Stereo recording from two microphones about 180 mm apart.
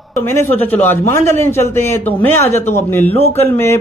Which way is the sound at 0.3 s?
10° left (ahead or behind).